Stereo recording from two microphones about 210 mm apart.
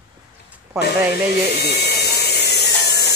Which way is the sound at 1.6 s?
50° left (ahead or behind).